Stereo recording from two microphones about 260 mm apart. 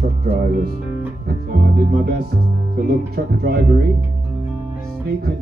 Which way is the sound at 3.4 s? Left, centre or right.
Right.